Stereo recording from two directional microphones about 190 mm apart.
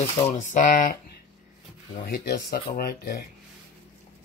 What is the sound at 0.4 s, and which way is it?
Speech, 45° left (ahead or behind).